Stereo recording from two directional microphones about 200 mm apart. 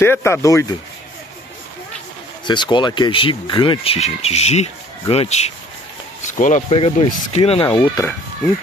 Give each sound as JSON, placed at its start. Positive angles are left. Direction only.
{"t": 0.0, "sound": "speech", "side_deg": 10}
{"t": 2.4, "sound": "speech", "side_deg": 20}